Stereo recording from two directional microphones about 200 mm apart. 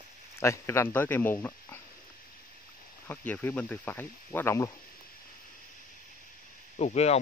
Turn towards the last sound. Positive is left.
turn(degrees=35)  # may be behind; listen again after turning